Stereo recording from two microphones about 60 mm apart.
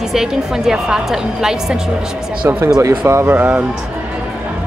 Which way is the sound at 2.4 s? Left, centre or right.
Right.